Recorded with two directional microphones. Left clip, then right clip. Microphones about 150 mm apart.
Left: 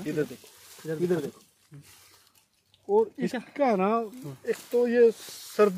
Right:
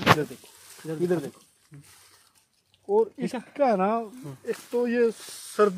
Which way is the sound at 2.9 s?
45° right (ahead or behind).